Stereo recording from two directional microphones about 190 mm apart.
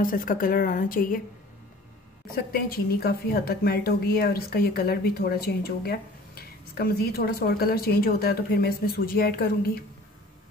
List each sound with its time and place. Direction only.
0.0 s speech: 45° left (ahead or behind)
2.3 s speech: 55° left (ahead or behind)